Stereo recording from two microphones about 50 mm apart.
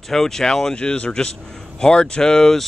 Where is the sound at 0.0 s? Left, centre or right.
Centre.